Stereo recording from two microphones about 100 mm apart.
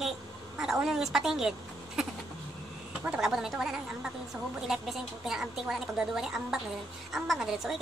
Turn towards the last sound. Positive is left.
turn(degrees=-5)  # may be behind; listen again after turning